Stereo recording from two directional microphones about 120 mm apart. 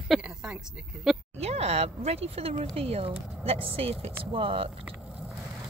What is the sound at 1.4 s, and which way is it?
Speech, 60° right (ahead or behind).